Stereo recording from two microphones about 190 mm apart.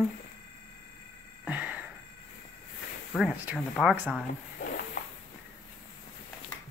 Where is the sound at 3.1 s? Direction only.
5° right (ahead or behind).